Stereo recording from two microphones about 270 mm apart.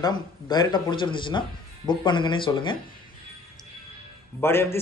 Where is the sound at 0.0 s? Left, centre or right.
Centre.